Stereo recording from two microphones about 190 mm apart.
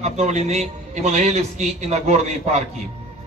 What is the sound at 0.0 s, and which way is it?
A man's voice, 35° right (ahead or behind).